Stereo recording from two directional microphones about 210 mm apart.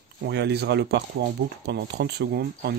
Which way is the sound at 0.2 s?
50° right (ahead or behind).